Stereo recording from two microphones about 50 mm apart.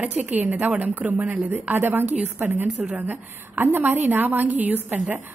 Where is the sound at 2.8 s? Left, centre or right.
Right.